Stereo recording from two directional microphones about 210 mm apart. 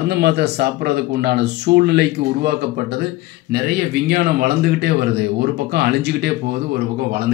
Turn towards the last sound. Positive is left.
turn(degrees=-50)  # may be behind; listen again after turning